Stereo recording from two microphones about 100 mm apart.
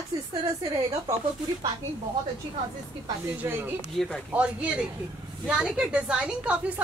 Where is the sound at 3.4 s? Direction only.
20° right (ahead or behind).